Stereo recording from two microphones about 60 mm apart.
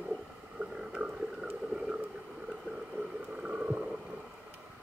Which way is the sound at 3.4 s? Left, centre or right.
Centre.